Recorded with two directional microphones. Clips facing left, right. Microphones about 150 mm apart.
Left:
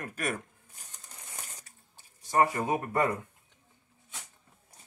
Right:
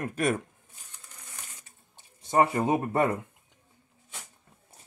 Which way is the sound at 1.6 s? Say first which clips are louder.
Right 1 dB; 20° right (ahead or behind).